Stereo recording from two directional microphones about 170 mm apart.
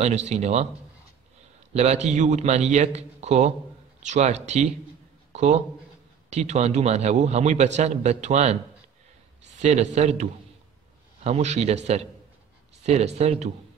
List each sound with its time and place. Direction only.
0.0 s a man's voice: 40° right (ahead or behind)
1.7 s a man's voice: 40° right (ahead or behind)
5.3 s a sound: 45° right (ahead or behind)
6.3 s a man's voice: 40° right (ahead or behind)
9.6 s speech: 45° right (ahead or behind)
11.2 s a man's voice: 40° right (ahead or behind)